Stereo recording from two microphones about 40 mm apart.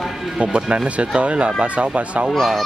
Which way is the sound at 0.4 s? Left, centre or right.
Right.